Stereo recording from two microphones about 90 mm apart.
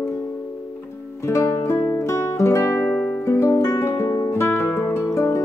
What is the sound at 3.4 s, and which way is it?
Guitar, 40° left (ahead or behind).